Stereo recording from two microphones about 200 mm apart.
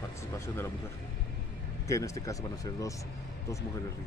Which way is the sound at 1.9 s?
15° left (ahead or behind).